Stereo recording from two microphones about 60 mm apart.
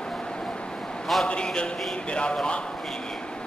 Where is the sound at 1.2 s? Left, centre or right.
Centre.